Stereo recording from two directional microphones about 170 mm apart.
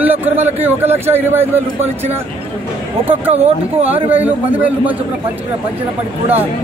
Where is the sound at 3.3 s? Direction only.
40° right (ahead or behind).